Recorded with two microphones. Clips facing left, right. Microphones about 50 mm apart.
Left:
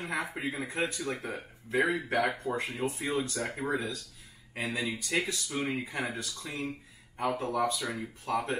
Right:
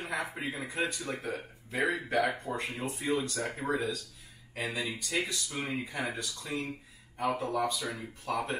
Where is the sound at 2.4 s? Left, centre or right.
Centre.